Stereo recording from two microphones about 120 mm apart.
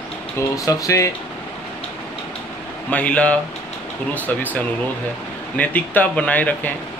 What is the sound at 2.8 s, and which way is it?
Speech, 10° left (ahead or behind).